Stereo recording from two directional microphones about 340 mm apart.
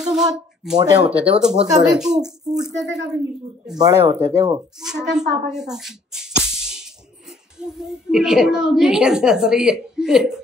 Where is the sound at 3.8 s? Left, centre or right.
Centre.